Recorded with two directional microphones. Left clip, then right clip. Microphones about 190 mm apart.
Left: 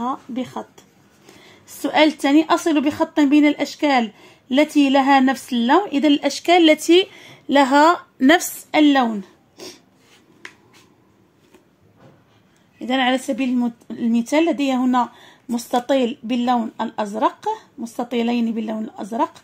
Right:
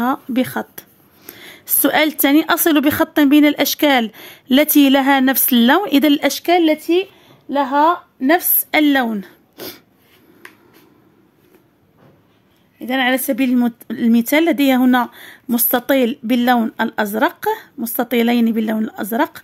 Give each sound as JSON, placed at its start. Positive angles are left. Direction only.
{"t": 0.0, "sound": "speech", "side_deg": -55}
{"t": 6.9, "sound": "a sound", "side_deg": 20}
{"t": 7.8, "sound": "a woman's voice", "side_deg": 25}
{"t": 8.6, "sound": "a woman's voice", "side_deg": -40}
{"t": 12.7, "sound": "a woman's voice", "side_deg": -10}
{"t": 13.2, "sound": "speech", "side_deg": -30}